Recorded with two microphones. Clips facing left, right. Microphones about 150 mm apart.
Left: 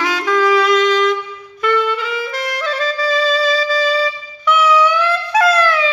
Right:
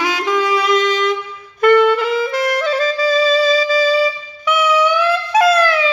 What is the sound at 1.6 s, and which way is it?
Saxophone, 50° right (ahead or behind).